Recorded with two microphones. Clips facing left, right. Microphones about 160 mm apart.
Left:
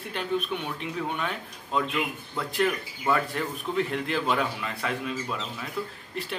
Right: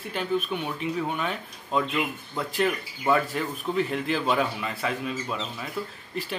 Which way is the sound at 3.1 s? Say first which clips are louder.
Right 2 dB; centre (ahead or behind).